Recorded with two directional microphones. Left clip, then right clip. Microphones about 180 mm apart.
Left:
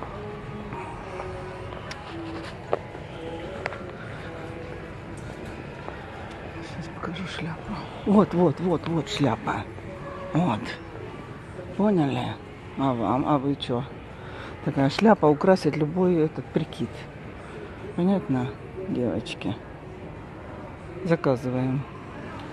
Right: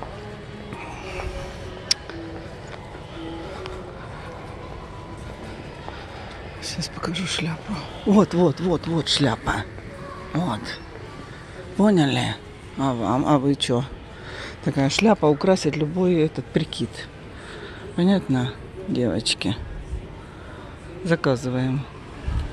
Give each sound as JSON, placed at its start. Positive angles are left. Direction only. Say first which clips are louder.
{"t": 6.6, "sound": "speech", "louder": "right 8 dB", "side_deg": -35}
{"t": 7.7, "sound": "speech", "louder": "right 2 dB", "side_deg": -20}
{"t": 10.4, "sound": "a man's voice", "louder": "even", "side_deg": 0}
{"t": 11.8, "sound": "speech", "louder": "right 4 dB", "side_deg": -25}
{"t": 12.7, "sound": "speech", "louder": "right 1 dB", "side_deg": -15}
{"t": 13.2, "sound": "speech", "louder": "right 4 dB", "side_deg": -30}
{"t": 14.4, "sound": "speech", "louder": "right 1 dB", "side_deg": -10}
{"t": 17.9, "sound": "speech", "louder": "right 3 dB", "side_deg": -25}
{"t": 21.0, "sound": "speech", "louder": "right 2 dB", "side_deg": -15}